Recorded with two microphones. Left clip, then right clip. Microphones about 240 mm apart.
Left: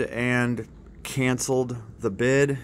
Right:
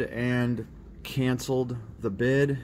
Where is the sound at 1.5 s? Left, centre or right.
Left.